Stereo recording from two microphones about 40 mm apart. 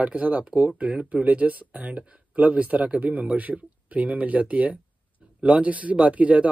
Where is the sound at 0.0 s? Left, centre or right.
Right.